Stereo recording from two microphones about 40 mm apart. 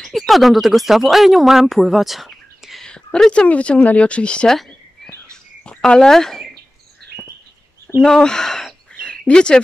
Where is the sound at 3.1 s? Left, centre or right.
Left.